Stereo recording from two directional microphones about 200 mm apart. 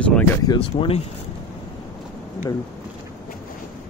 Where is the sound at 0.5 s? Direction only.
25° left (ahead or behind).